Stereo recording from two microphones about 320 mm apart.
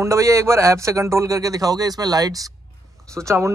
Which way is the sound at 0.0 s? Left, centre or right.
Centre.